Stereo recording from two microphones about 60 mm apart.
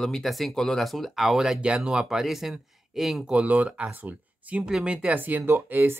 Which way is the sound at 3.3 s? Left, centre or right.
Right.